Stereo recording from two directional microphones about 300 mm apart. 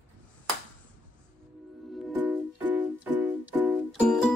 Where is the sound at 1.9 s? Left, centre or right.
Centre.